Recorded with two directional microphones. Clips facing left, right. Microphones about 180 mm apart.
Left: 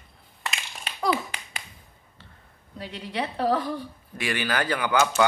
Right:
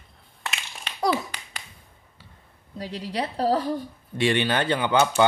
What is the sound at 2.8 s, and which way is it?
Speech, 35° right (ahead or behind).